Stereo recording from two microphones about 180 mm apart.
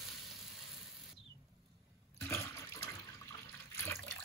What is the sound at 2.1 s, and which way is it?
Toilet flush, 15° left (ahead or behind).